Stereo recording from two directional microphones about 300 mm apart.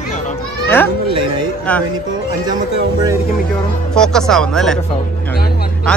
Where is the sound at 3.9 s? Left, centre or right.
Centre.